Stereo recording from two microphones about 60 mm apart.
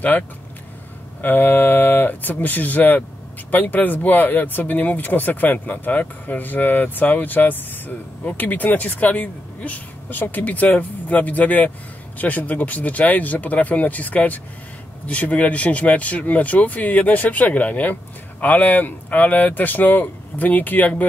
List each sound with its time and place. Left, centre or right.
1.2 s speech: left